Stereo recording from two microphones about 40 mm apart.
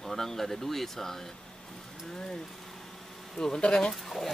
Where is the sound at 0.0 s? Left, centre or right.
Centre.